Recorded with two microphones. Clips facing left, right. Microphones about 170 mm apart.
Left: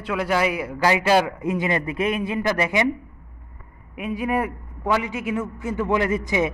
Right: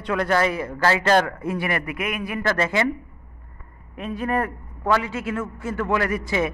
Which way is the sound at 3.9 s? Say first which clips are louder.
Left 1 dB; 10° left (ahead or behind).